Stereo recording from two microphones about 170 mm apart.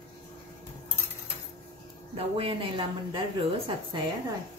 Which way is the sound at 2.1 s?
30° right (ahead or behind).